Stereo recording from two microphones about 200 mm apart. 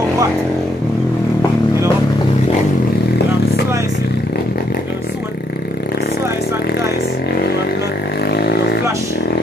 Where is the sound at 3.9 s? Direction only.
50° left (ahead or behind).